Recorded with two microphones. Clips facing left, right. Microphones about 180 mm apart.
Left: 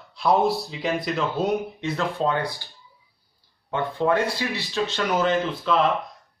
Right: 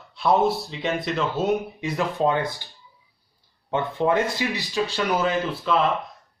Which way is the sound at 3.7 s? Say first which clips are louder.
Even; 20° right (ahead or behind).